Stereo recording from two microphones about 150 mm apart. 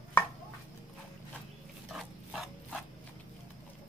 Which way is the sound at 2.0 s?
Centre (ahead or behind).